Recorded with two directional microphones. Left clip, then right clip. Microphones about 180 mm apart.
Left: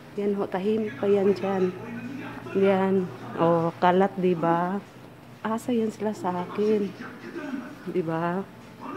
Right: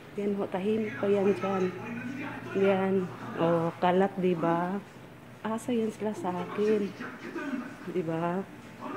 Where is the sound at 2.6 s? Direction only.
20° left (ahead or behind).